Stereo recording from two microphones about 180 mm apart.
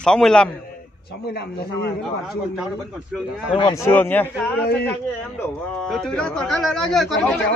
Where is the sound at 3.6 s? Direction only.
20° left (ahead or behind).